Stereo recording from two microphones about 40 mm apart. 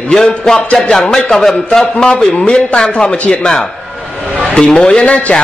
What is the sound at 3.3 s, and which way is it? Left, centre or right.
A man's voice, centre.